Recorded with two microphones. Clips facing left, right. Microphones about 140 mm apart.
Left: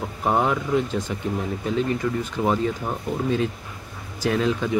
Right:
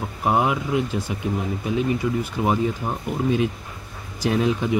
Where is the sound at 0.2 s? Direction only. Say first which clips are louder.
Right 1 dB; 10° right (ahead or behind).